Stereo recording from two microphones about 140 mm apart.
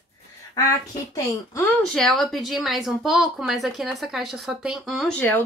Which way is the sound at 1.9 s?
Centre (ahead or behind).